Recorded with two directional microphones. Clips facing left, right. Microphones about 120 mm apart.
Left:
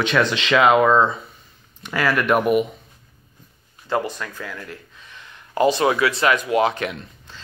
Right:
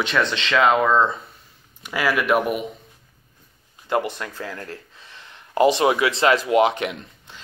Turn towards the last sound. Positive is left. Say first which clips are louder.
# even
turn(degrees=-20)  # may be behind; listen again after turning